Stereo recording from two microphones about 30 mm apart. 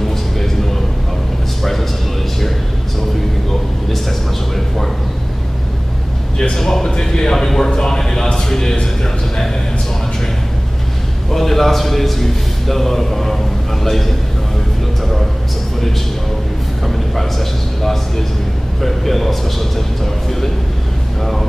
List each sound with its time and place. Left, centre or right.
1.6 s a sound: centre
6.5 s a man's voice: centre
11.3 s a man's voice: centre
16.8 s a man's voice: centre